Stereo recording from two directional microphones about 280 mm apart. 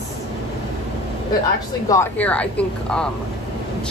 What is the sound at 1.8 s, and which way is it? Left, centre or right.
A woman's voice, centre.